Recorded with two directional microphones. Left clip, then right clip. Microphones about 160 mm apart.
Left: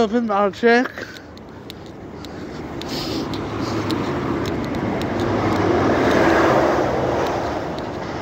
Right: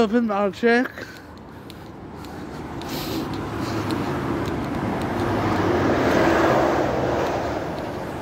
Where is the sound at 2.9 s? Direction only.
40° right (ahead or behind).